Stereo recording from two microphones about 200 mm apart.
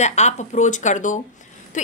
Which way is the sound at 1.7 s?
40° left (ahead or behind).